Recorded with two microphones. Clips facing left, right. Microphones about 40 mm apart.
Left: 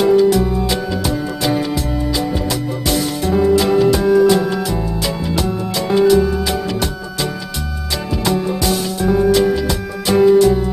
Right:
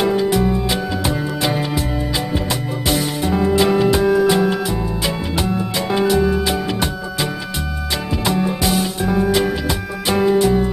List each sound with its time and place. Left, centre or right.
0.0 s music: centre
2.9 s music: centre